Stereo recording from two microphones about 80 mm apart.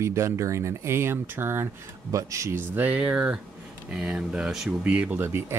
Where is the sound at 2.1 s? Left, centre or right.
Right.